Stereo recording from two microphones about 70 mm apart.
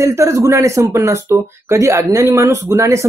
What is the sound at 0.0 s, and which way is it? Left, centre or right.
Speech, right.